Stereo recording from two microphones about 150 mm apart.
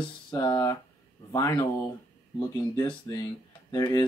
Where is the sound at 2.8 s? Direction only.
25° left (ahead or behind).